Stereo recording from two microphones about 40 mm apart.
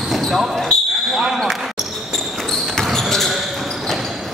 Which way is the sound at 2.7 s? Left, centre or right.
Centre.